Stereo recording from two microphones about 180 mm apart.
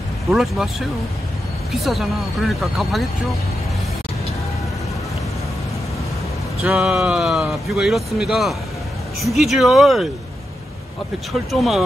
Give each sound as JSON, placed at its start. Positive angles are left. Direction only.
{"t": 0.3, "sound": "speech", "side_deg": 0}
{"t": 6.6, "sound": "speech", "side_deg": -5}
{"t": 11.5, "sound": "speech", "side_deg": 0}